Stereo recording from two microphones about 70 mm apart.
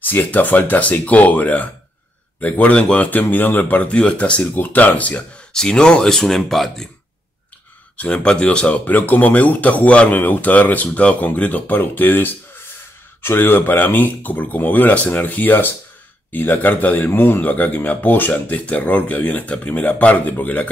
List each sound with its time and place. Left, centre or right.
0.0 s speech: left
5.5 s speech: centre
8.0 s speech: centre